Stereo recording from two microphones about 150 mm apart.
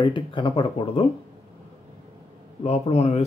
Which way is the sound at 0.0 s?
35° left (ahead or behind).